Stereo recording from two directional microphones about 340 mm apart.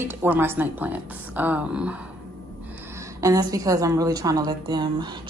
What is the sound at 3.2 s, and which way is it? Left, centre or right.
A woman's voice, centre.